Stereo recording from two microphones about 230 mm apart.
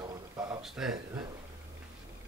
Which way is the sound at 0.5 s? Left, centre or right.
Centre.